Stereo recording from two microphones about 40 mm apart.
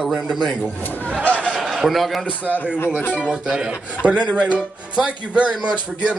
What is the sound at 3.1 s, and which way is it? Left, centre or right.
Speech, right.